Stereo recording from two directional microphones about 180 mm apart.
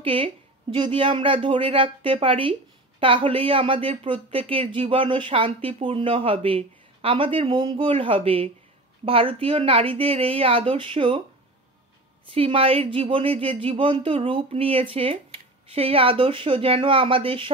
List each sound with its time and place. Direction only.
0.0 s speech: 30° right (ahead or behind)
12.3 s speech: 30° right (ahead or behind)